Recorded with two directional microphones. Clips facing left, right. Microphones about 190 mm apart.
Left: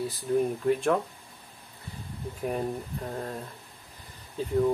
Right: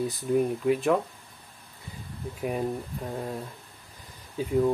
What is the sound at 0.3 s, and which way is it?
Speech, 10° right (ahead or behind).